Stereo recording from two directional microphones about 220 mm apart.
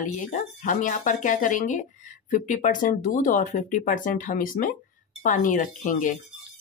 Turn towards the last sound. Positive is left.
turn(degrees=35)  # may be behind; listen again after turning